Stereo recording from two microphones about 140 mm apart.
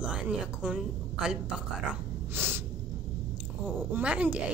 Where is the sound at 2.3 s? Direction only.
15° right (ahead or behind).